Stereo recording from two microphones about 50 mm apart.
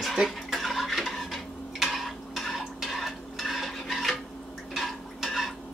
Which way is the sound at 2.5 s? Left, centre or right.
Centre.